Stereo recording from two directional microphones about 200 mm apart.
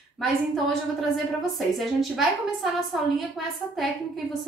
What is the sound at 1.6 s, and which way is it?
A woman's voice, centre (ahead or behind).